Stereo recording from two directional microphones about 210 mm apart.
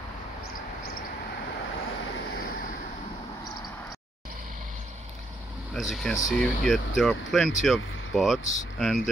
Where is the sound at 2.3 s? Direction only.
45° left (ahead or behind).